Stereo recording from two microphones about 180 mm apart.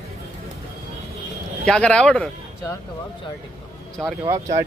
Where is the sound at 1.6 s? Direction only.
5° left (ahead or behind).